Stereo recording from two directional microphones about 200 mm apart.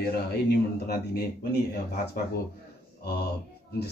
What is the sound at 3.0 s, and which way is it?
Speech, 50° left (ahead or behind).